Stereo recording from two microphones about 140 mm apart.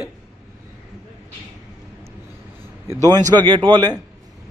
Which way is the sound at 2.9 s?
25° right (ahead or behind).